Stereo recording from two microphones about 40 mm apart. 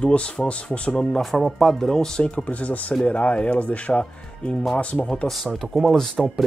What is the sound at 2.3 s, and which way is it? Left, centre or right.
Speech, left.